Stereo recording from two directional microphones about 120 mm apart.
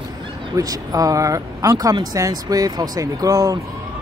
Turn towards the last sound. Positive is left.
turn(degrees=-30)  # may be behind; listen again after turning